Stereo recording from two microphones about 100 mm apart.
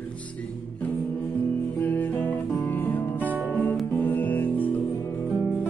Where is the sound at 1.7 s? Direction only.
15° left (ahead or behind).